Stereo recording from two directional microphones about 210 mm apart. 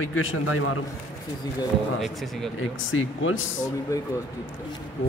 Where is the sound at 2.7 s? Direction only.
70° left (ahead or behind).